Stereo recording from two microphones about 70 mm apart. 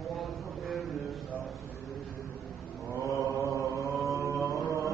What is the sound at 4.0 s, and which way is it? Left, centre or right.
Mantra, right.